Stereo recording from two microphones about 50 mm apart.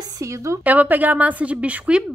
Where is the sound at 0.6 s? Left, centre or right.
Right.